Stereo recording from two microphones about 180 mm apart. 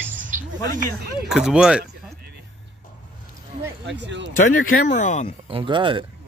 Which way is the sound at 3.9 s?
80° right.